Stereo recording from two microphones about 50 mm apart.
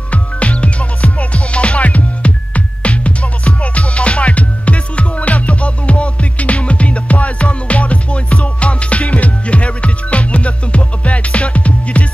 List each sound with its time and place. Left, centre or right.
0.1 s music: left